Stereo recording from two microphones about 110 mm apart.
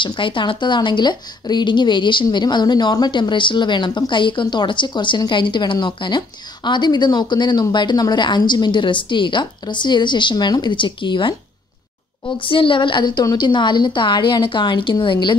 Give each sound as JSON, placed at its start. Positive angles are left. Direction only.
{"t": 0.0, "sound": "a woman's voice", "side_deg": 50}
{"t": 12.4, "sound": "a woman's voice", "side_deg": 50}